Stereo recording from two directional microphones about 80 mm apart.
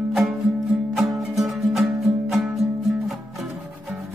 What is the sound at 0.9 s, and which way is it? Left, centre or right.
Music, centre.